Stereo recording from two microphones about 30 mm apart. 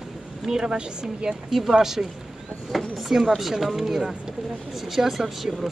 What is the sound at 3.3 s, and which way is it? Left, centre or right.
Speech, centre.